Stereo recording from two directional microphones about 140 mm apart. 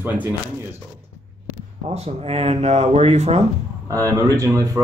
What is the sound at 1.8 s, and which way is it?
Speech, 45° right (ahead or behind).